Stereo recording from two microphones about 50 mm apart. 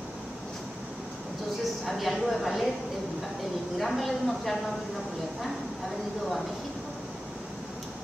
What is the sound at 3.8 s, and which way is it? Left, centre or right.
Speech, centre.